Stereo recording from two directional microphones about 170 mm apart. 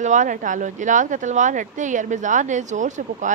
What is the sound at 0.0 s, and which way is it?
Speech, 45° right (ahead or behind).